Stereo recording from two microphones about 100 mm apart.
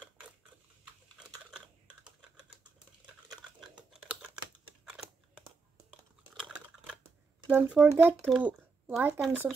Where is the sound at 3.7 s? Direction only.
10° right (ahead or behind).